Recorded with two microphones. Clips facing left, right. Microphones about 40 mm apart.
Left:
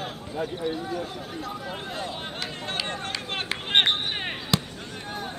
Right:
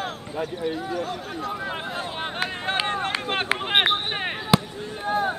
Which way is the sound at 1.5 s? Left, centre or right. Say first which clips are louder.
Right 4 dB; right.